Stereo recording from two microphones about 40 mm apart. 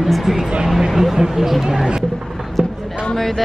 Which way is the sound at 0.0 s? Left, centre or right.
Centre.